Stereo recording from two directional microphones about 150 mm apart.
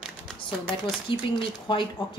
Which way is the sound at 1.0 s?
35° left (ahead or behind).